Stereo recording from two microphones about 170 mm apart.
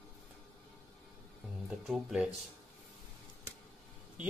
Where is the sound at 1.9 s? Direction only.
5° right (ahead or behind).